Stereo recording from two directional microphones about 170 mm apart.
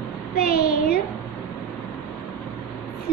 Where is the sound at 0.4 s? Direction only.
60° left (ahead or behind).